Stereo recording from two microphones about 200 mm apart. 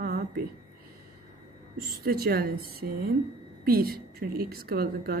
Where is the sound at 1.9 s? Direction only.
50° right (ahead or behind).